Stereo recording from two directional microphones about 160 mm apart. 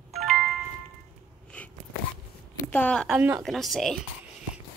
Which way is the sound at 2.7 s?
5° left (ahead or behind).